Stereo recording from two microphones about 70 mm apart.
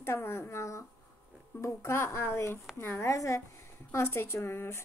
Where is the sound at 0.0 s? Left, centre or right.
Left.